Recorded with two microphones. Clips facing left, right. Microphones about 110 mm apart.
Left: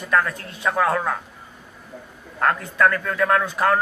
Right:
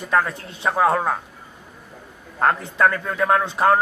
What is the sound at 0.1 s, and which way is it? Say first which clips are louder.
A man's voice: even; 25° right (ahead or behind).